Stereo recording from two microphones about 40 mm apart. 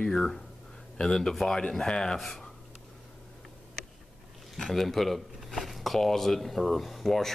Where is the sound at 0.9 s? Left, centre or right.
Centre.